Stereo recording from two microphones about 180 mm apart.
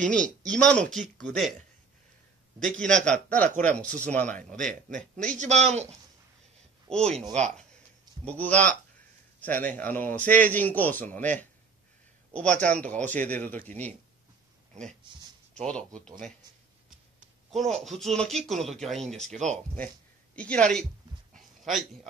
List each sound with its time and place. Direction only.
0.5 s speech: 5° left (ahead or behind)
2.6 s a man's voice: 5° left (ahead or behind)
4.6 s a man's voice: 45° right (ahead or behind)
6.9 s speech: 5° left (ahead or behind)
8.3 s a man's voice: 10° left (ahead or behind)
12.4 s a man's voice: 5° left (ahead or behind)
15.5 s speech: 5° left (ahead or behind)
17.2 s a man's voice: centre (ahead or behind)
21.4 s a sound: centre (ahead or behind)